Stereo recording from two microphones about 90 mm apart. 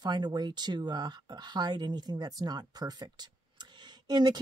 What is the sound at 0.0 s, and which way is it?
Speech, 50° right (ahead or behind).